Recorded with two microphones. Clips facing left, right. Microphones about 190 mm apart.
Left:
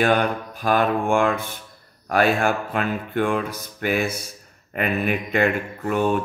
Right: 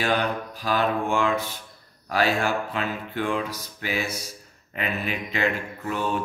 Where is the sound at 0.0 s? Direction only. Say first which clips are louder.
Left 5 dB; 55° left (ahead or behind).